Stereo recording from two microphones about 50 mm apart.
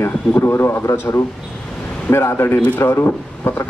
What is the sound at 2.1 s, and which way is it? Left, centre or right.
A man's voice, left.